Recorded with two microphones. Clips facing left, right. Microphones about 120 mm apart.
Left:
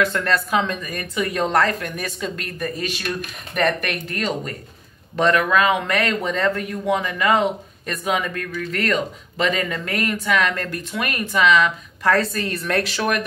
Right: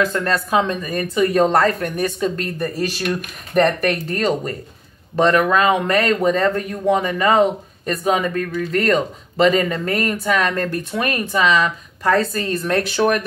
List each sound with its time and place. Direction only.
0.0 s speech: 30° right (ahead or behind)